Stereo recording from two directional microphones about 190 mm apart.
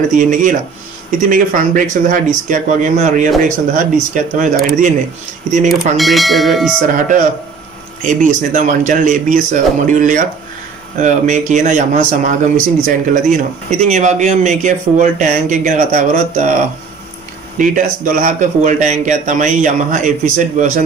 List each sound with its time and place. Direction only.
0.1 s speech: 45° right (ahead or behind)
5.9 s speech: centre (ahead or behind)
6.9 s speech: 45° right (ahead or behind)
17.6 s speech: 45° right (ahead or behind)